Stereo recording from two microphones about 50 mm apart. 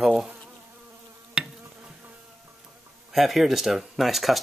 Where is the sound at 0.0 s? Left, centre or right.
Centre.